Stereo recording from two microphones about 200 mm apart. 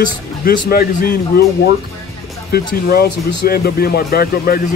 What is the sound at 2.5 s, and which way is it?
Speech, 50° left (ahead or behind).